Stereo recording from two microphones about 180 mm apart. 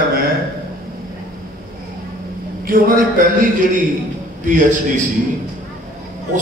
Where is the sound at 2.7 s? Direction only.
55° right (ahead or behind).